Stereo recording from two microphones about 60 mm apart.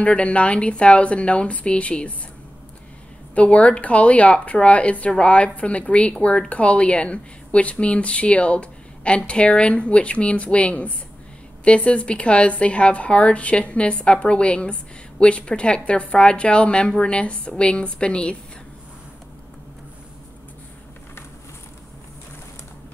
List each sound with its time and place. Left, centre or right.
0.0 s speech: centre
3.3 s speech: left